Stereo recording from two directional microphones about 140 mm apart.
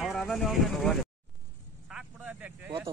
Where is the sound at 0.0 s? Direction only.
Centre (ahead or behind).